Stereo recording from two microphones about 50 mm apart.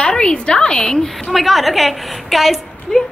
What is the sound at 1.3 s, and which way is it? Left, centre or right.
A woman's voice, centre.